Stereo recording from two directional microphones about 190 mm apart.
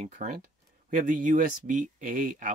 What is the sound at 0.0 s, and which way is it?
Speech, 40° right (ahead or behind).